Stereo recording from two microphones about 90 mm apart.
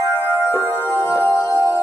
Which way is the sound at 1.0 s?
25° left (ahead or behind).